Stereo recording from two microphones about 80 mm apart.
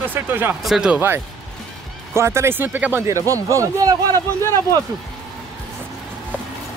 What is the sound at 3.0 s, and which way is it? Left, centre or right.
Speech, right.